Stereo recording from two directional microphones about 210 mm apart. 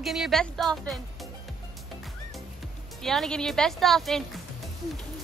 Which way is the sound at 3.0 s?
Centre (ahead or behind).